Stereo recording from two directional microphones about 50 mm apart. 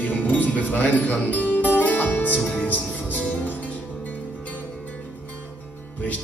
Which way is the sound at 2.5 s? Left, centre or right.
Left.